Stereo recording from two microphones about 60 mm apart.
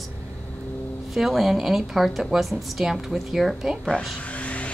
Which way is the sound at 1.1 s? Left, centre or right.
Centre.